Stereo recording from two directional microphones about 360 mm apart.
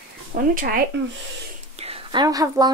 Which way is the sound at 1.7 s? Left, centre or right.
Centre.